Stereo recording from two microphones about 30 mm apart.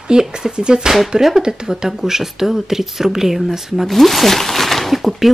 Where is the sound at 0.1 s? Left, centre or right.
Right.